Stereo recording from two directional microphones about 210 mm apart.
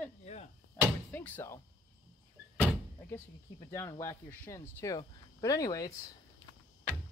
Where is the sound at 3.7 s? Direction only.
15° left (ahead or behind).